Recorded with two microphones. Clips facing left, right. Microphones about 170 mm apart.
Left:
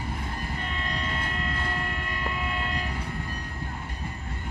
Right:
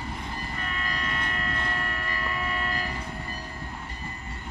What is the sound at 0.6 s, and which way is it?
Train, 30° left (ahead or behind).